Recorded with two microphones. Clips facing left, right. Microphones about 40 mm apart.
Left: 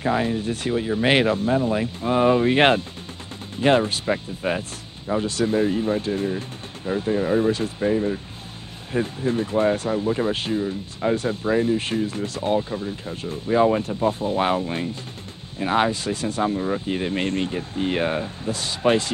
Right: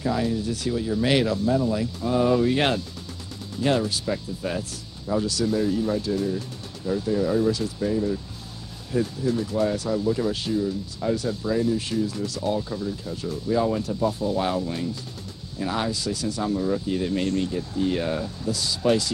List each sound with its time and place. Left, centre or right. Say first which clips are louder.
0.0 s speech: left 2 dB; left